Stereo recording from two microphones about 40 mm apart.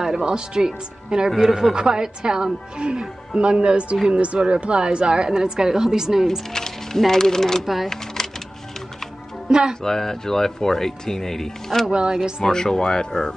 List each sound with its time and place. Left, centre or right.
0.0 s a woman's voice: centre
6.5 s music: centre
7.0 s speech: centre
7.6 s speech: centre
9.5 s a woman's voice: right
9.8 s speech: centre
11.9 s a woman's voice: right
12.4 s speech: centre